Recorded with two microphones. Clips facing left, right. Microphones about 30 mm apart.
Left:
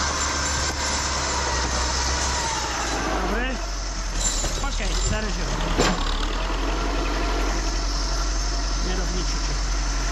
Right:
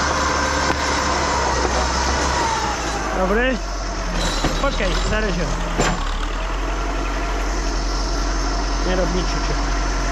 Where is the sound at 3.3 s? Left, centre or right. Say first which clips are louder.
Right 8 dB; right.